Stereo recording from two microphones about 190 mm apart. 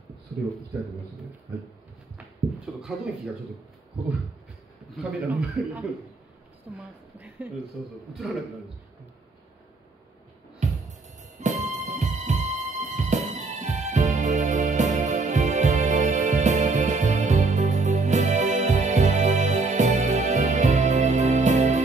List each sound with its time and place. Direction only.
2.1 s a sound: 5° right (ahead or behind)
4.9 s a man's voice: 10° right (ahead or behind)
10.6 s music: 40° right (ahead or behind)